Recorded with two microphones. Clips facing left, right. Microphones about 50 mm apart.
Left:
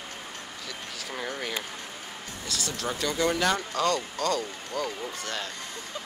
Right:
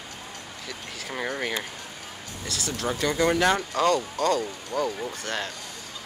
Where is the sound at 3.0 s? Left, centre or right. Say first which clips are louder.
Right 4 dB; centre.